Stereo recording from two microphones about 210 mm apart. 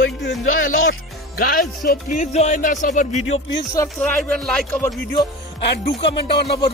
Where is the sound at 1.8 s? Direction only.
40° left (ahead or behind).